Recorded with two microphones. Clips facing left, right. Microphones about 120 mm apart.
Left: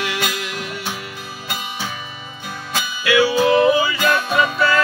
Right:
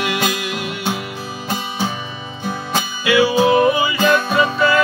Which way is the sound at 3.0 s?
15° right (ahead or behind).